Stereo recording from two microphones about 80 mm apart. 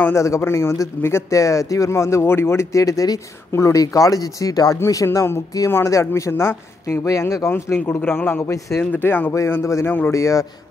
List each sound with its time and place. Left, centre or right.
0.1 s speech: left
4.7 s speech: left
8.9 s speech: left
9.3 s speech: left
10.1 s speech: left